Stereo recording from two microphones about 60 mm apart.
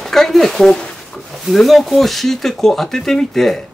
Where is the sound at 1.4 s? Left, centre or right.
Centre.